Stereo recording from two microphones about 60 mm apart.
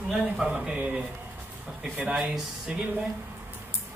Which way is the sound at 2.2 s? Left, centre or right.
Centre.